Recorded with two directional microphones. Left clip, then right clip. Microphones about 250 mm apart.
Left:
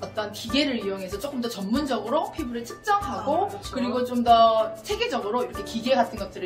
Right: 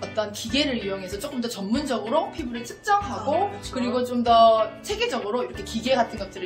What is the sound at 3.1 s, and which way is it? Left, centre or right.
Speech, centre.